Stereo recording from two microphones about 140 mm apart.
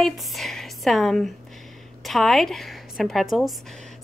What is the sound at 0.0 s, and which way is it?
A woman's voice, centre (ahead or behind).